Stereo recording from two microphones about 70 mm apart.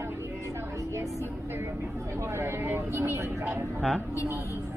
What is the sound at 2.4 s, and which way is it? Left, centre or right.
Vehicle, right.